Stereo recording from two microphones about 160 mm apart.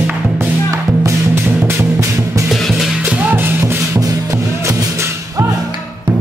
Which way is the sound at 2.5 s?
Centre (ahead or behind).